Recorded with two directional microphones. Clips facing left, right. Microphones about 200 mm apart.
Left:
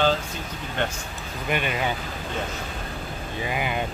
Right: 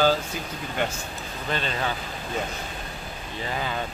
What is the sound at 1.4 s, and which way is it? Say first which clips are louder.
Speech: left 2 dB; 15° left (ahead or behind).